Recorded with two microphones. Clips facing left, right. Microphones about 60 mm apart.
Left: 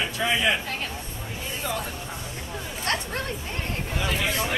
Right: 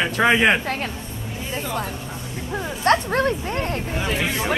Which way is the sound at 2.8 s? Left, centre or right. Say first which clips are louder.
Right 11 dB; right.